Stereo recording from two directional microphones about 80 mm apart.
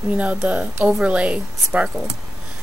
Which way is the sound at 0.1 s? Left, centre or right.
Centre.